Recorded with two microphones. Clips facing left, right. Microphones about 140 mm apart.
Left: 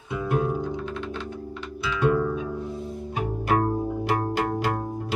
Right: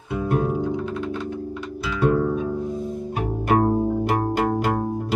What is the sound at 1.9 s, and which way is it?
Music, 40° right (ahead or behind).